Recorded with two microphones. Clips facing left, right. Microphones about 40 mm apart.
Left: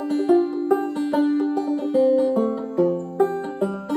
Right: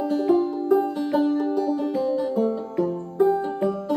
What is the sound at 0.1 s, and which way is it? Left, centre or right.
Music, left.